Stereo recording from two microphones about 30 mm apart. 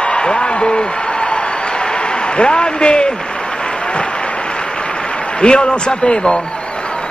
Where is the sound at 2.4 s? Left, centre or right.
Left.